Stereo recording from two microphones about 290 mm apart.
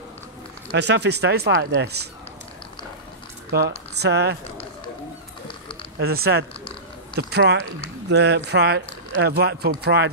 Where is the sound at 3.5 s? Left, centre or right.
Right.